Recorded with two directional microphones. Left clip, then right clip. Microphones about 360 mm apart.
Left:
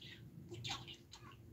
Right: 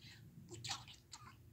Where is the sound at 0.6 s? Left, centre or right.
Centre.